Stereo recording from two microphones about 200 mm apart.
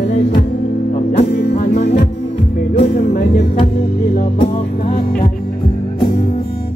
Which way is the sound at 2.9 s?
45° left (ahead or behind).